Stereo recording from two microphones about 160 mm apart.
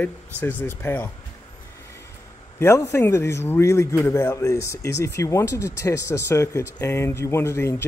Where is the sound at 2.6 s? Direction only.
15° left (ahead or behind).